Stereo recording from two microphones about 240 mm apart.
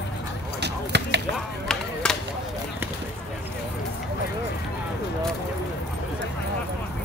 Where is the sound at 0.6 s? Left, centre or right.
Right.